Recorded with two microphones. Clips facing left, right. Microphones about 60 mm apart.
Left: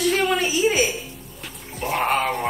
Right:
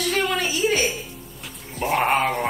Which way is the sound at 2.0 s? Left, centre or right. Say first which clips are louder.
Even; centre.